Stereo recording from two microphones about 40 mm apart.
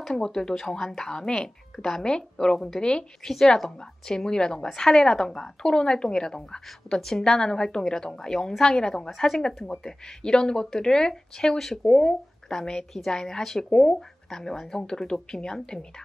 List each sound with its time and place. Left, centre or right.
0.0 s a woman's voice: centre
11.8 s a woman's voice: centre